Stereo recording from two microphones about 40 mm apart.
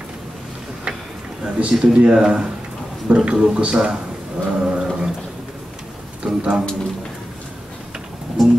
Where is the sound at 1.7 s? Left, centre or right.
Centre.